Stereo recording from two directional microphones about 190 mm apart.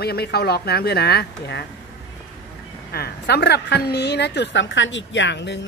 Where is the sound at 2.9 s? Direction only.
60° left (ahead or behind).